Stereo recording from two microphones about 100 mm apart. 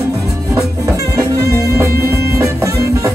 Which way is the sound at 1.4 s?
30° right (ahead or behind).